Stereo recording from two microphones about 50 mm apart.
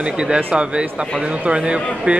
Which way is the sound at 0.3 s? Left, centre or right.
Right.